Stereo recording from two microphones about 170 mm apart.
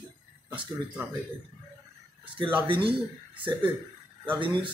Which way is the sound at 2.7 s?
30° right (ahead or behind).